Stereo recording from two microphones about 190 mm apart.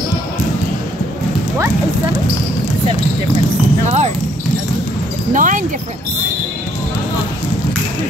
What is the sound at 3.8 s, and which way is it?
Basketball bounce, 35° right (ahead or behind).